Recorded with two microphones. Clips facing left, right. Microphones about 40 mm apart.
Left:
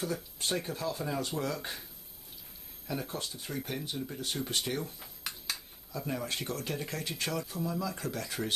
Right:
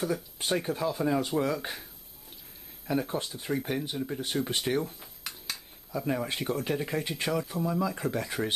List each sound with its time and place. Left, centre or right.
0.4 s speech: centre
2.9 s speech: right
5.0 s finger snapping: centre
5.9 s speech: centre